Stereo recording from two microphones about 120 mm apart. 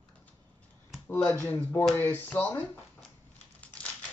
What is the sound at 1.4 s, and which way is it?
Speech, 15° left (ahead or behind).